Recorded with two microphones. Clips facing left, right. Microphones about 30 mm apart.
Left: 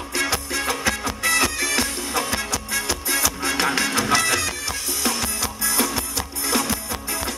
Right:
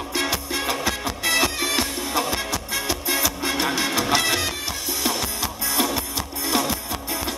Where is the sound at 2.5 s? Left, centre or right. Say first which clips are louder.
Even; right.